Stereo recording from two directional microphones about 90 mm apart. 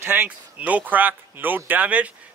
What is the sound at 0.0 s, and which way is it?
A man's voice, 25° right (ahead or behind).